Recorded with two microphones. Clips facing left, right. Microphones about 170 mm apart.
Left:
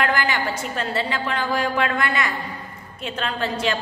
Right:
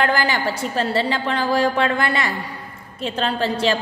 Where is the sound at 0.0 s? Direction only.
30° right (ahead or behind).